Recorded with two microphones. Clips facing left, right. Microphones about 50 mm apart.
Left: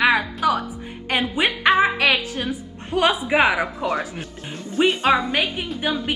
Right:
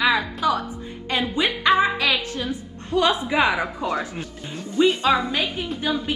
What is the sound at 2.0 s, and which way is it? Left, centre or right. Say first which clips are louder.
Music: left 3 dB; left.